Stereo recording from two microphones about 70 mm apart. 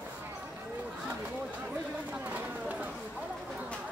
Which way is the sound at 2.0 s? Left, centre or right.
Right.